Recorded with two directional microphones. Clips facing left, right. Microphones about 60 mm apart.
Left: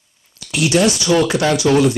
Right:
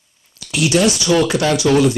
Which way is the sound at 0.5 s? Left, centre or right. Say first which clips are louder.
Even; left.